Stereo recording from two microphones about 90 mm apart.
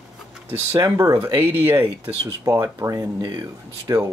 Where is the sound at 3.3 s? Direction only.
55° right (ahead or behind).